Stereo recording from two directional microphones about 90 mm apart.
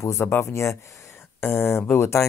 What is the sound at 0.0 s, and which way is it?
Speech, 30° left (ahead or behind).